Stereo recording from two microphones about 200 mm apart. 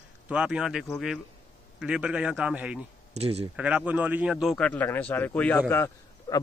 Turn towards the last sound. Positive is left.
turn(degrees=10)  # may be behind; listen again after turning